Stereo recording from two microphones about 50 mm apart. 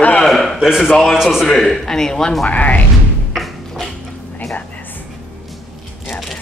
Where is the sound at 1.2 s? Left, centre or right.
Centre.